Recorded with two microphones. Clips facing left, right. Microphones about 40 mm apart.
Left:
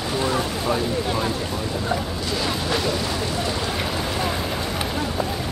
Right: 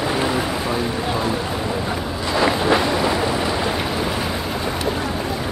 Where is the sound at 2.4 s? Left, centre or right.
Right.